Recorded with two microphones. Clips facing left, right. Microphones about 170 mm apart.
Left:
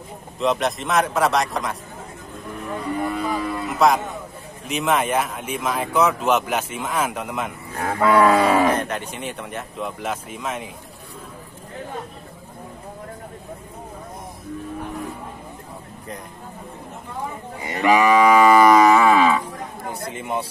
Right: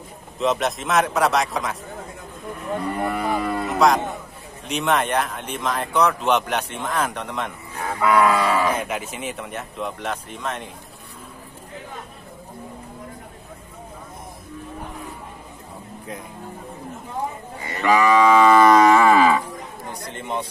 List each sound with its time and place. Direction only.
0.4 s speech: centre (ahead or behind)
3.0 s cattle: 60° right (ahead or behind)
3.6 s music: centre (ahead or behind)
4.6 s speech: centre (ahead or behind)
7.7 s livestock: 50° left (ahead or behind)
8.7 s speech: 5° right (ahead or behind)
17.6 s moo: 15° left (ahead or behind); by 19.4 s centre (ahead or behind)
19.9 s speech: 5° left (ahead or behind)